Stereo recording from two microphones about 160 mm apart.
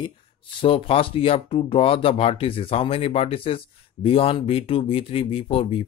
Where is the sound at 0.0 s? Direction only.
35° left (ahead or behind).